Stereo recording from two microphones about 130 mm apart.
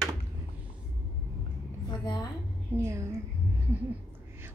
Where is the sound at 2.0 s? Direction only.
30° left (ahead or behind).